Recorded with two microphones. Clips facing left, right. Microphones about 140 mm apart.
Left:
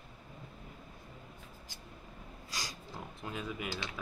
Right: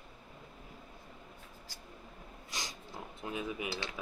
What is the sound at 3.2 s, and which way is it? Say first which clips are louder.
Speech: right 2 dB; 15° right (ahead or behind).